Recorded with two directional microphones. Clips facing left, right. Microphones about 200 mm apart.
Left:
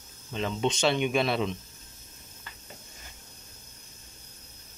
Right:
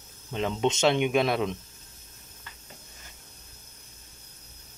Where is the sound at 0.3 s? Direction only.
15° right (ahead or behind).